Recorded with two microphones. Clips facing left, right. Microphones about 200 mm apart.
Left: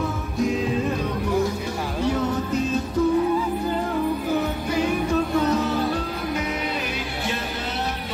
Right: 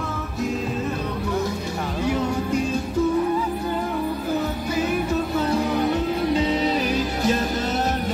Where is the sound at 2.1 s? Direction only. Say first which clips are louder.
Right 1 dB; 10° right (ahead or behind).